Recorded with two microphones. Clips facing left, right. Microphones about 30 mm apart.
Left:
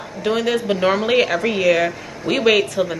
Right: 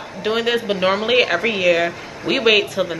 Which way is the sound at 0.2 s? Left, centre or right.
Centre.